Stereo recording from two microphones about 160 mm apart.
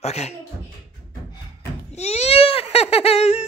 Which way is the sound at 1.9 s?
45° left (ahead or behind).